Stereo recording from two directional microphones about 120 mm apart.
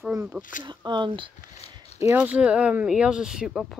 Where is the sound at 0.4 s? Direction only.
90° left.